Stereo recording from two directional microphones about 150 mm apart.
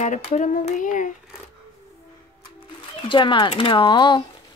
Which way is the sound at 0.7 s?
60° left (ahead or behind).